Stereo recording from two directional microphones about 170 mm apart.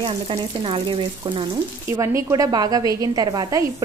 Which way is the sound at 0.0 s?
30° right (ahead or behind).